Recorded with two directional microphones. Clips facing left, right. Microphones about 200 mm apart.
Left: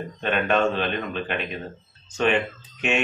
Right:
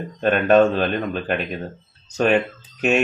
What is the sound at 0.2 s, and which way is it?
Speech, 40° right (ahead or behind).